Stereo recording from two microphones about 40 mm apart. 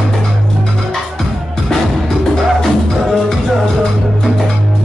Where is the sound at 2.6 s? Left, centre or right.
Centre.